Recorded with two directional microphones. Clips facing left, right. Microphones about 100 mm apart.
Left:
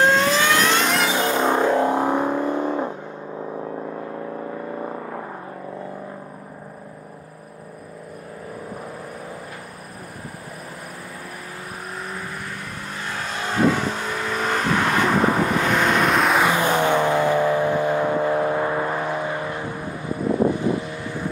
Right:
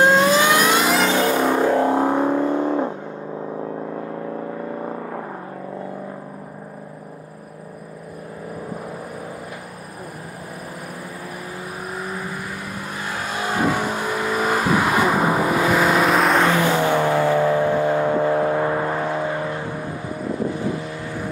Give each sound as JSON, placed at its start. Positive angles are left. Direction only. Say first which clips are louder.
{"t": 0.0, "sound": "vehicle", "louder": "right 3 dB", "side_deg": -15}
{"t": 1.2, "sound": "music", "louder": "right 1 dB", "side_deg": 25}
{"t": 2.3, "sound": "car", "louder": "right 3 dB", "side_deg": 15}
{"t": 2.7, "sound": "vehicle", "louder": "right 3 dB", "side_deg": -20}
{"t": 12.1, "sound": "vehicle", "louder": "right 3 dB", "side_deg": -10}
{"t": 16.9, "sound": "vehicle", "louder": "right 1 dB", "side_deg": 20}
{"t": 18.1, "sound": "vehicle", "louder": "right 2 dB", "side_deg": -20}
{"t": 20.5, "sound": "vehicle", "louder": "left 2 dB", "side_deg": 20}